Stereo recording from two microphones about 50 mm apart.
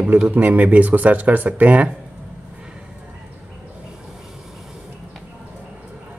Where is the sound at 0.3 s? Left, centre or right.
Right.